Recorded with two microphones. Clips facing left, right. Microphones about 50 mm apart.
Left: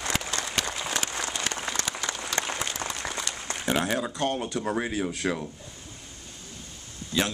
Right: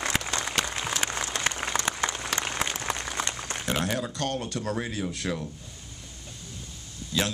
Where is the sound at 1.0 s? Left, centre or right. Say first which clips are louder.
Right 2 dB; right.